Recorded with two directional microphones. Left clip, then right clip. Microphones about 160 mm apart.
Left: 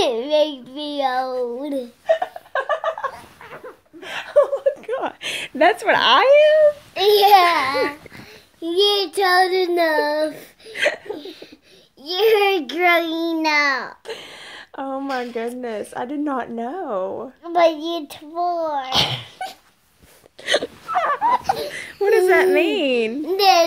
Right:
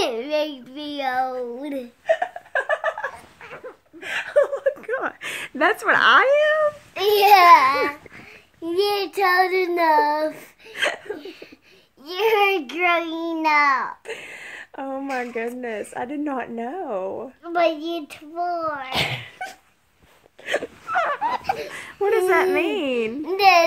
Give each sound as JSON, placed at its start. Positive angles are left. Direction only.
{"t": 0.0, "sound": "a child's voice", "side_deg": -5}
{"t": 2.1, "sound": "laughter", "side_deg": -10}
{"t": 3.4, "sound": "a sound", "side_deg": -5}
{"t": 4.0, "sound": "a sound", "side_deg": -15}
{"t": 4.8, "sound": "speech", "side_deg": -5}
{"t": 7.1, "sound": "a child's voice", "side_deg": -20}
{"t": 8.6, "sound": "a child's voice", "side_deg": 0}
{"t": 13.4, "sound": "a child's voice", "side_deg": 0}
{"t": 20.4, "sound": "a child's voice", "side_deg": 10}
{"t": 20.9, "sound": "a child's voice", "side_deg": -5}
{"t": 21.4, "sound": "speech", "side_deg": 10}
{"t": 21.6, "sound": "a child's voice", "side_deg": -10}